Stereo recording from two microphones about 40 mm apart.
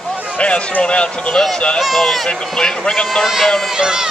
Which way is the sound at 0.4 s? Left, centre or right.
Left.